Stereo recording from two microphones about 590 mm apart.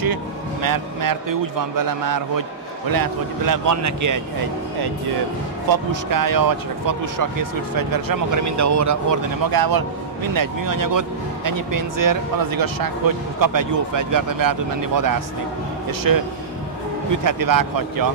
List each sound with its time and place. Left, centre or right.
0.0 s speech: right
5.7 s speech: right